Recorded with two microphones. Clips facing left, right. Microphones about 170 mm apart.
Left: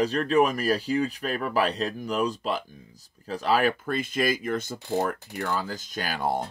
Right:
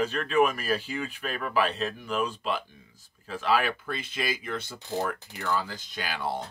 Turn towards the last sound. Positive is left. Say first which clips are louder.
# left 4 dB
turn(degrees=45)  # may be behind; listen again after turning